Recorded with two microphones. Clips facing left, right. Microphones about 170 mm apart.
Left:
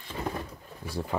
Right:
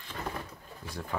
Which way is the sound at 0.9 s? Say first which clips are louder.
Left 5 dB; 30° left (ahead or behind).